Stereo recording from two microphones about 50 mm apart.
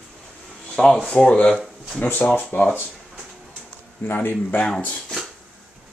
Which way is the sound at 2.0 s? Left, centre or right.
Left.